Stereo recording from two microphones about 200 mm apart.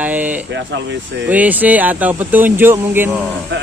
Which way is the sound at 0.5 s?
60° right (ahead or behind).